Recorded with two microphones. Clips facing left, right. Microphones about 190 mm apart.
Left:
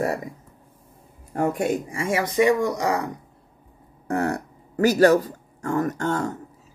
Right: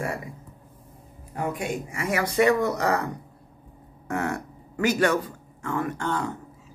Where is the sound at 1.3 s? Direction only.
45° left (ahead or behind).